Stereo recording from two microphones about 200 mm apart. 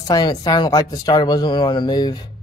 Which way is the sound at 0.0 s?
20° left (ahead or behind).